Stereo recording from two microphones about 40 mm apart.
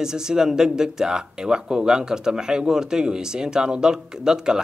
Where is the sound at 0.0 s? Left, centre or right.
Centre.